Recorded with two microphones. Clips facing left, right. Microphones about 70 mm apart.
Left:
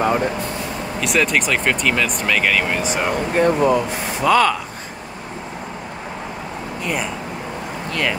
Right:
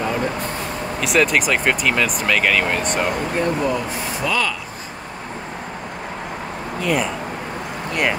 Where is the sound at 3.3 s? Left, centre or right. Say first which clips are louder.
Left 7 dB; left.